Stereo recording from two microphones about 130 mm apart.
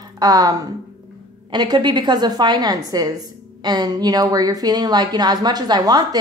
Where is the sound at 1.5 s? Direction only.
35° right (ahead or behind).